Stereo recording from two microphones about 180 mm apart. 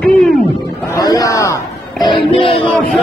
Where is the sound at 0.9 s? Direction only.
20° left (ahead or behind).